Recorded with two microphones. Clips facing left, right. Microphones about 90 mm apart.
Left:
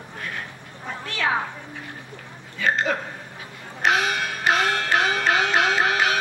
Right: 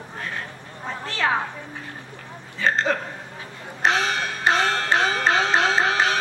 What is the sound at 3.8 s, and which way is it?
Music, 30° right (ahead or behind).